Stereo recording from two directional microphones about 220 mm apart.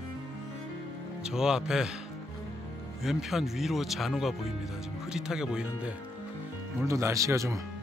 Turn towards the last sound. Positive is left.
turn(degrees=-15)  # may be behind; listen again after turning